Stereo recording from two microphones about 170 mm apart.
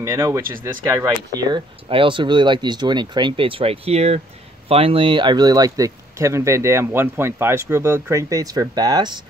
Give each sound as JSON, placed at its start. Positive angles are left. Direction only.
{"t": 0.0, "sound": "speech", "side_deg": -20}